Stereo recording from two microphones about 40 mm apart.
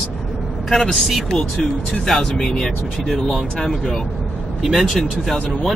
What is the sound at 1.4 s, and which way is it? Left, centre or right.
Speech, left.